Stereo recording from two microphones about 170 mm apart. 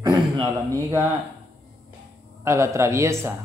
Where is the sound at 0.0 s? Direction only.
20° right (ahead or behind).